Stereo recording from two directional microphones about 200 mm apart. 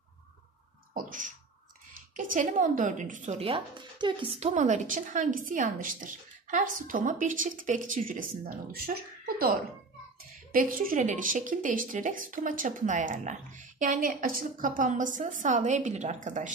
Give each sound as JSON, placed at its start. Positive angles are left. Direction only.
{"t": 2.1, "sound": "speech", "side_deg": -40}
{"t": 10.5, "sound": "speech", "side_deg": -45}